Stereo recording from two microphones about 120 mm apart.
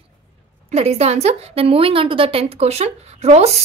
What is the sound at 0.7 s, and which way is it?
A woman's voice, 60° right (ahead or behind).